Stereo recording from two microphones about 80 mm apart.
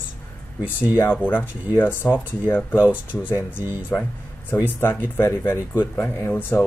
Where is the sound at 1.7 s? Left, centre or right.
Left.